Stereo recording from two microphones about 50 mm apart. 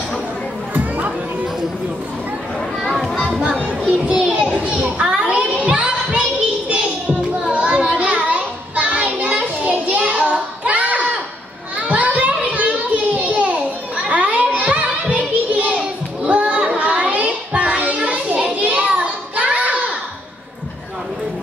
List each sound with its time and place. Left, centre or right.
0.7 s a sound: right
3.2 s music: centre
4.0 s children playing: right
4.9 s child singing: centre
11.8 s a sound: right
16.3 s child singing: right